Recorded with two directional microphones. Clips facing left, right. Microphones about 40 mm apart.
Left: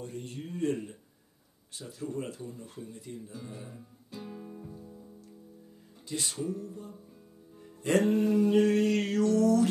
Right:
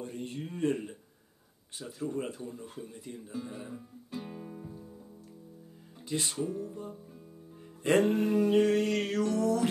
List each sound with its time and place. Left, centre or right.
0.0 s speech: right
2.0 s speech: right
6.0 s speech: right
6.3 s music: centre
6.6 s a sound: right
8.1 s a sound: right
8.5 s music: centre
9.2 s music: right